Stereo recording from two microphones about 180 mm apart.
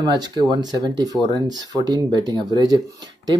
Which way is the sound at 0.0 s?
25° right (ahead or behind).